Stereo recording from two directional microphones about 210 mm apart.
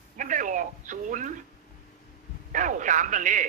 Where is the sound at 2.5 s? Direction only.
35° right (ahead or behind).